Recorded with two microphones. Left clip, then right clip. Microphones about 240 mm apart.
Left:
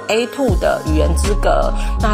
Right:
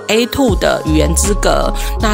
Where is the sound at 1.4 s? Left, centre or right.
Right.